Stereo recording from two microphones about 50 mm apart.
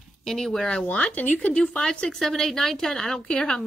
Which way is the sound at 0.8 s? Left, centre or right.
Left.